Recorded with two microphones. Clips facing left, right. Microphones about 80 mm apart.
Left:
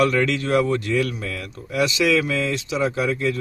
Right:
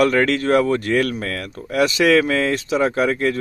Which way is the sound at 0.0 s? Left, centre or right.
Right.